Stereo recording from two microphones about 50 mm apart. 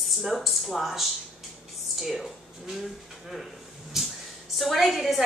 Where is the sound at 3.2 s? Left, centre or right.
Centre.